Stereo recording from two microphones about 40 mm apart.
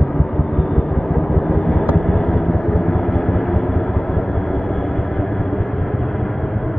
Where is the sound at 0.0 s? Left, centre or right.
Centre.